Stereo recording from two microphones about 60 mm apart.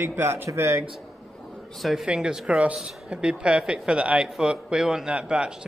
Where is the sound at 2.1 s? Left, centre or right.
Centre.